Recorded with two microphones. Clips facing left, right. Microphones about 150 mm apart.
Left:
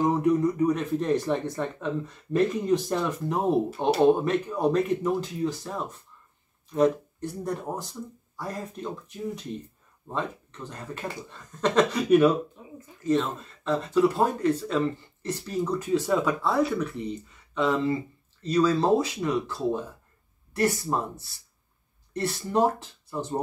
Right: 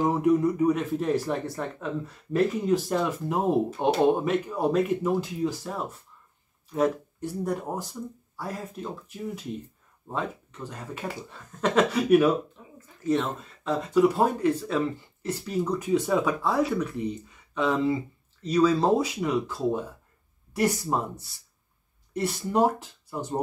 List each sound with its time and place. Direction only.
0.0 s speech: 10° right (ahead or behind)
12.6 s a sound: 15° left (ahead or behind)
13.0 s speech: 10° right (ahead or behind)